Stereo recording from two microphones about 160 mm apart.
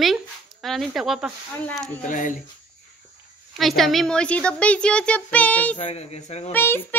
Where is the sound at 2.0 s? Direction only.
55° left (ahead or behind).